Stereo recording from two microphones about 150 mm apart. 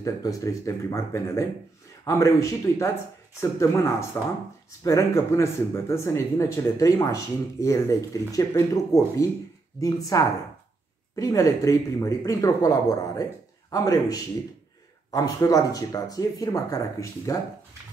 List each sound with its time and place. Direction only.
0.0 s speech: 20° left (ahead or behind)